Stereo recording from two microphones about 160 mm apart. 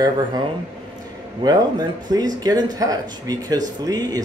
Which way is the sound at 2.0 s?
25° right (ahead or behind).